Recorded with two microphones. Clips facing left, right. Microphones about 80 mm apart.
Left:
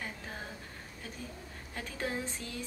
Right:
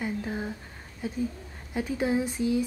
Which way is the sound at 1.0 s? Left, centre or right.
Centre.